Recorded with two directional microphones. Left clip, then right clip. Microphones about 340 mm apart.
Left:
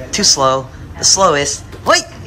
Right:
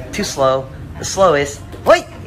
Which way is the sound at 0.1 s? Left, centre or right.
Centre.